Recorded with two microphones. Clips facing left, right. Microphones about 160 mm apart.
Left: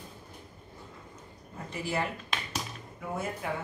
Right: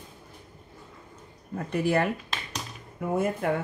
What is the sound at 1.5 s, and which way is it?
Speech, 60° right (ahead or behind).